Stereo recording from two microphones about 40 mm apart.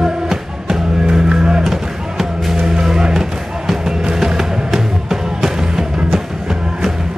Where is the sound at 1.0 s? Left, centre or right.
Centre.